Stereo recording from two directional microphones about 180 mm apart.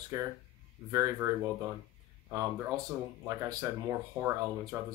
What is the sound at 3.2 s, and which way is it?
Speech, 15° right (ahead or behind).